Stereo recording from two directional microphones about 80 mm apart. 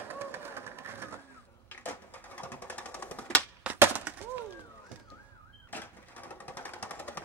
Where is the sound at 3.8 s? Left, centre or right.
Right.